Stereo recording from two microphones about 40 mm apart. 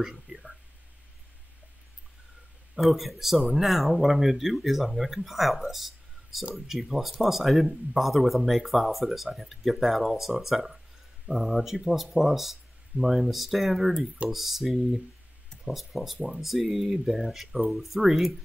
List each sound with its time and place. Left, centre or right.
0.0 s a sound: centre
2.7 s speech: centre
13.9 s speech: right
14.3 s speech: centre